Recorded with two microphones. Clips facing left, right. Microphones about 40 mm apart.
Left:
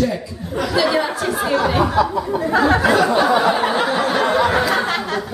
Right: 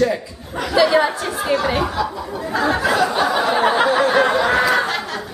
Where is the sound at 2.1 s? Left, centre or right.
Centre.